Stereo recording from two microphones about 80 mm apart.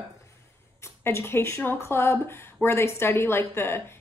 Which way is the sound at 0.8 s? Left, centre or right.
Left.